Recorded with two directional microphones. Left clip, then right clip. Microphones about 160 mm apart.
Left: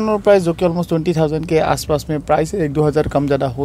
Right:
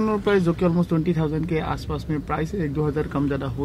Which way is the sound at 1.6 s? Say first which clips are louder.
Left 12 dB; 50° left (ahead or behind).